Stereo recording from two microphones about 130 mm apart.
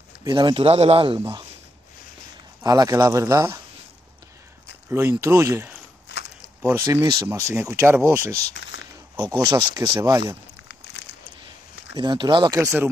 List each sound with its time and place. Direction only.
0.2 s speech: 30° right (ahead or behind)
2.6 s speech: 30° right (ahead or behind)
4.8 s speech: 20° right (ahead or behind)
7.2 s speech: 20° right (ahead or behind)
9.5 s speech: 35° right (ahead or behind)
11.9 s speech: 35° right (ahead or behind)
12.5 s speech: 20° right (ahead or behind)